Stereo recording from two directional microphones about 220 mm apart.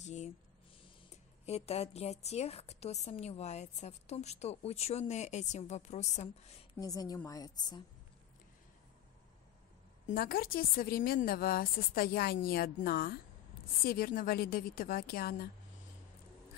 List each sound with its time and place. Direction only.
0.0 s a sound: 30° left (ahead or behind)
1.1 s a woman's voice: 30° left (ahead or behind)
6.8 s a woman's voice: 15° left (ahead or behind)
10.0 s a woman's voice: 40° left (ahead or behind)